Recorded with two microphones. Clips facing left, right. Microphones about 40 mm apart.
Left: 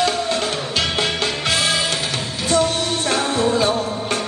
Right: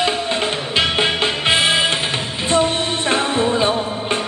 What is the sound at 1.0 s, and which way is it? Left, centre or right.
Music, right.